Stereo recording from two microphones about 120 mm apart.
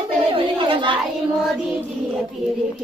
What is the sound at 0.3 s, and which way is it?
Chatter, 45° right (ahead or behind).